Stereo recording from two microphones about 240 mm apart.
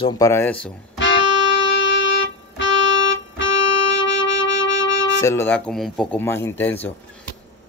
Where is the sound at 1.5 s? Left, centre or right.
Left.